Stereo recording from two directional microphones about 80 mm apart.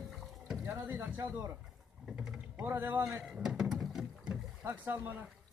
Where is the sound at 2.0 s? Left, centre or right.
Centre.